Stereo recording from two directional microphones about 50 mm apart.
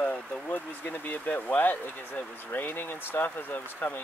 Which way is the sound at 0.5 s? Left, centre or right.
Left.